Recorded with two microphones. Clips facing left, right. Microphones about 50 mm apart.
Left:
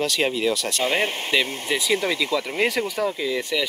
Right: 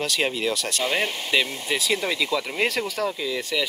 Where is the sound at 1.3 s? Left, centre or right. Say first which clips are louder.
Even; centre.